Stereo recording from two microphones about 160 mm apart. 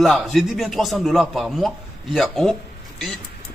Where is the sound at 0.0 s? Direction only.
Centre (ahead or behind).